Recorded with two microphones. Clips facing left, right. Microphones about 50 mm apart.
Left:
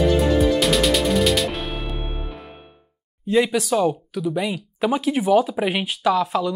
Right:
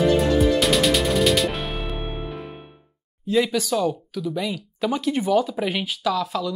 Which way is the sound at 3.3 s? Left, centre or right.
Centre.